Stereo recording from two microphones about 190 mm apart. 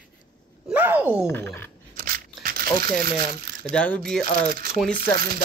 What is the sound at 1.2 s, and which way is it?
Speech, 15° left (ahead or behind).